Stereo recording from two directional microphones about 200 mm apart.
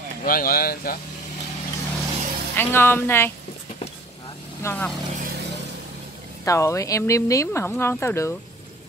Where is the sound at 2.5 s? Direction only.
10° left (ahead or behind).